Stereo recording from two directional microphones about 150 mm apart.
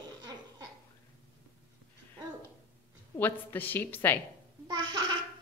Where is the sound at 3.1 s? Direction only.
10° left (ahead or behind).